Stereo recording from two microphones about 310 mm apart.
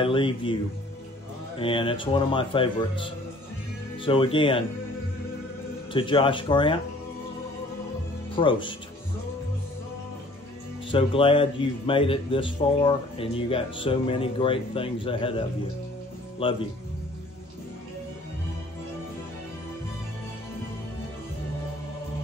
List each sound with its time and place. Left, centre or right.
0.0 s a man's voice: centre
1.6 s a man's voice: centre
5.9 s a man's voice: centre
8.4 s a man's voice: centre
10.9 s a man's voice: centre